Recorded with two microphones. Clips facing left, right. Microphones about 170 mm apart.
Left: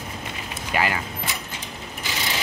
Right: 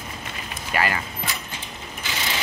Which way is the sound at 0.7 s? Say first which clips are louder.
Even; 15° left (ahead or behind).